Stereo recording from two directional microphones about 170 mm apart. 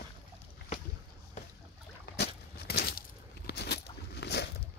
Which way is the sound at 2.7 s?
70° left (ahead or behind).